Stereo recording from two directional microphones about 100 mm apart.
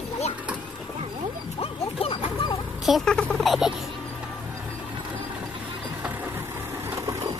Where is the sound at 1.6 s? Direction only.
70° left (ahead or behind).